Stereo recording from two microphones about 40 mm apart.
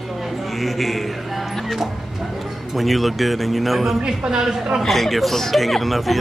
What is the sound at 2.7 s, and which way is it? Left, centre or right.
Speech, centre.